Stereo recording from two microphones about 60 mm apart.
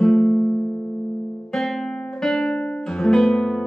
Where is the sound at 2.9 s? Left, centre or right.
Centre.